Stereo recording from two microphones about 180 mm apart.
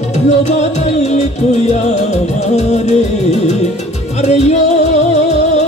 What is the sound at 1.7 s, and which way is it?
Music, 40° left (ahead or behind).